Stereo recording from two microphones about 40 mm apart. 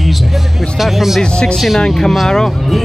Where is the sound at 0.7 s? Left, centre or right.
Centre.